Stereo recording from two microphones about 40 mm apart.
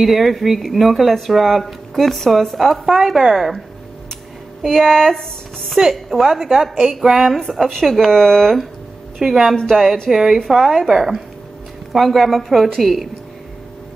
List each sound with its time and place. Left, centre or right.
0.0 s speech: centre
4.6 s speech: centre
5.8 s a woman's voice: centre
7.8 s speech: centre
9.2 s a woman's voice: centre